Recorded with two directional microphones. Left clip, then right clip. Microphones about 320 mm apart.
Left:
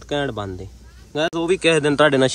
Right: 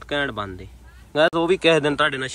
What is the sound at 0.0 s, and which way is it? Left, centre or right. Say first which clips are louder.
Speech: left 1 dB; centre.